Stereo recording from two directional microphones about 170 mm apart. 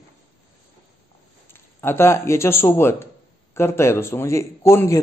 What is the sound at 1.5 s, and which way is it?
Speech, 15° left (ahead or behind).